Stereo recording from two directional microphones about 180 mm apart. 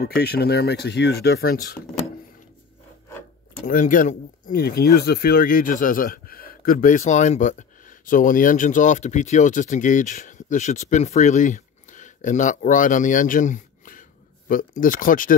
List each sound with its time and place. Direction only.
0.0 s speech: 65° left (ahead or behind)
3.6 s speech: 50° left (ahead or behind)